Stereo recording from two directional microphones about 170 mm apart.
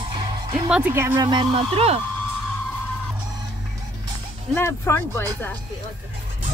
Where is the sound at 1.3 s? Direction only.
30° right (ahead or behind).